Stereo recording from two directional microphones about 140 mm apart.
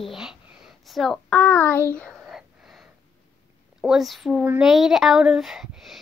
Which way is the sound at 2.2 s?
5° right (ahead or behind).